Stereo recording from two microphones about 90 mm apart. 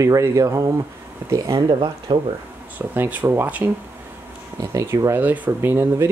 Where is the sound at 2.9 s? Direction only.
20° right (ahead or behind).